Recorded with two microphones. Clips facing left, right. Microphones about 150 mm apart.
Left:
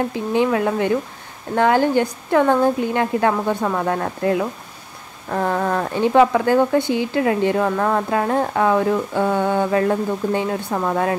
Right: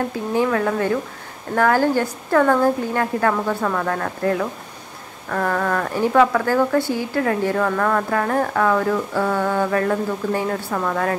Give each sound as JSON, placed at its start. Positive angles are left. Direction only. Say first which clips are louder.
{"t": 0.3, "sound": "speech", "louder": "left 1 dB", "side_deg": 20}